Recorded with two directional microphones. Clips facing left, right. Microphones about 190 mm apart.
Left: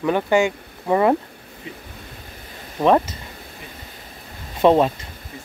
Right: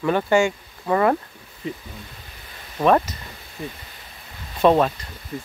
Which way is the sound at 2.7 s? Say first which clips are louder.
Left 1 dB; 20° left (ahead or behind).